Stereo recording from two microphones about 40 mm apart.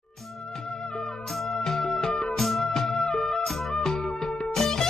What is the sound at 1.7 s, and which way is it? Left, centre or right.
Music, centre.